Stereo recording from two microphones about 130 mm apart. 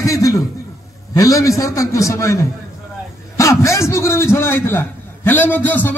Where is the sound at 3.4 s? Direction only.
20° left (ahead or behind).